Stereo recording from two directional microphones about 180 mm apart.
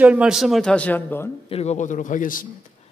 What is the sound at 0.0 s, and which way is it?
A man's voice, 5° right (ahead or behind).